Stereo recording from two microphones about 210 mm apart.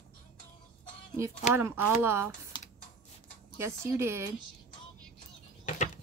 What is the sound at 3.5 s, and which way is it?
Speech, 10° right (ahead or behind).